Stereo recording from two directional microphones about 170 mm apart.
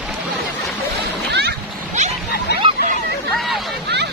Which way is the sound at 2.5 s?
75° left (ahead or behind).